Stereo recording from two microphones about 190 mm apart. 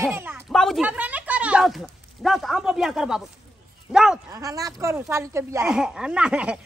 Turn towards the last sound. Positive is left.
turn(degrees=-5)  # may be behind; listen again after turning